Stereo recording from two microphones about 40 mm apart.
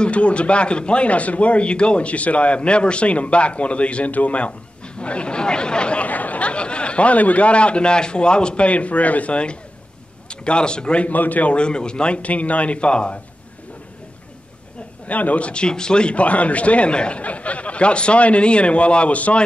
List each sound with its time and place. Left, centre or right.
0.0 s speech: left
6.0 s speech: left
11.1 s a man's voice: left
11.5 s speech: left
15.0 s a man's voice: left